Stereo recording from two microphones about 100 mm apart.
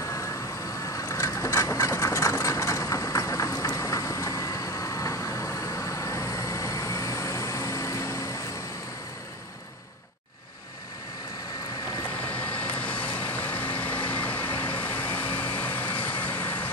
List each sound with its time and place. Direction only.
0.0 s vehicle: 30° left (ahead or behind)
12.3 s vehicle: 15° left (ahead or behind)